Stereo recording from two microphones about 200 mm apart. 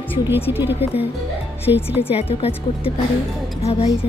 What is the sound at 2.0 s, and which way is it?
Speech, 30° left (ahead or behind).